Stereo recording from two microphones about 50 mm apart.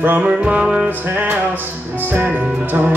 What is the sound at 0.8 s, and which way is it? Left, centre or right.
Music, right.